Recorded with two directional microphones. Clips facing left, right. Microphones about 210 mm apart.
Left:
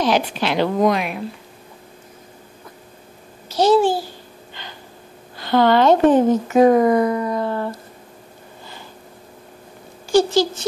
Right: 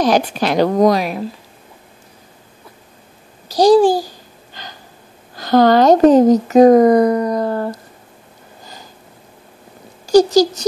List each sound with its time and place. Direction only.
0.0 s speech: 40° right (ahead or behind)
3.5 s speech: 35° right (ahead or behind)
4.6 s a sound: 40° right (ahead or behind)
5.3 s speech: 40° right (ahead or behind)
10.0 s speech: 40° right (ahead or behind)